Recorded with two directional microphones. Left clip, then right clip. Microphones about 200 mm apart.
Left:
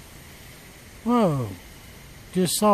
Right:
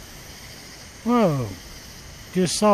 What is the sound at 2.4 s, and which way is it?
Speech, 20° left (ahead or behind).